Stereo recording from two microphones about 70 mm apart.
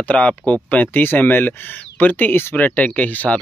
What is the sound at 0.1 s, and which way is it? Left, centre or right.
Speech, centre.